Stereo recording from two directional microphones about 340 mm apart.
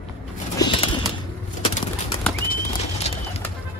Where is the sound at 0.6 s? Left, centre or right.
Centre.